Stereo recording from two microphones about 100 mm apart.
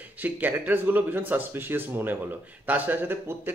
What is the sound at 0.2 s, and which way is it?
Speech, 20° right (ahead or behind).